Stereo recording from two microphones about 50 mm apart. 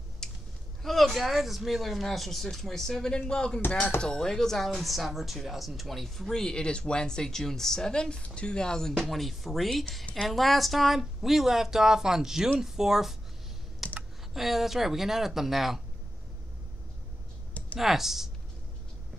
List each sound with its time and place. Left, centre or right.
0.2 s clicking: centre
0.8 s speech: centre
13.8 s computer keyboard: centre
14.3 s speech: centre
17.7 s speech: centre